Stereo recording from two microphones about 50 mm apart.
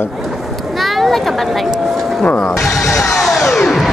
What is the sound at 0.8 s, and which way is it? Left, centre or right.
Speech, centre.